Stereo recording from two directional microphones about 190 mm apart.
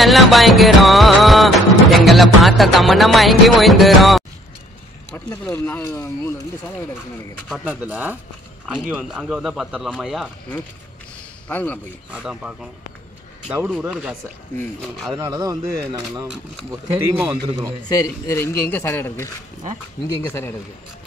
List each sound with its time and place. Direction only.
0.0 s music: centre (ahead or behind)
5.1 s a man's voice: 10° left (ahead or behind)
7.4 s speech: 5° right (ahead or behind)
8.6 s music: 5° right (ahead or behind)
11.4 s a man's voice: 10° left (ahead or behind)
12.1 s music: 5° right (ahead or behind)
13.7 s music: 5° right (ahead or behind)
15.1 s speech: 15° right (ahead or behind)
17.9 s a man's voice: 15° left (ahead or behind)